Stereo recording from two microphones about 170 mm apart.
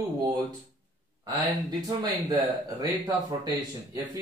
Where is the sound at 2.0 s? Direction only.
25° right (ahead or behind).